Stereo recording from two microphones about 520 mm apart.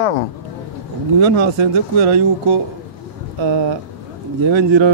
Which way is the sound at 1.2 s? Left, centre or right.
Right.